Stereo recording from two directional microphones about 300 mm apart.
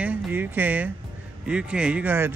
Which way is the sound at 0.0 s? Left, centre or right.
Centre.